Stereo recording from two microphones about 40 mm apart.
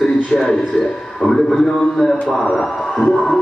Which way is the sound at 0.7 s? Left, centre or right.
Left.